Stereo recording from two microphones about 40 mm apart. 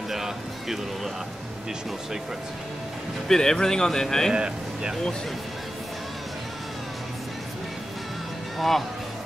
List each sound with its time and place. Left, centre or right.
0.1 s a sound: centre
3.3 s speech: centre
4.3 s speech: centre
8.5 s speech: centre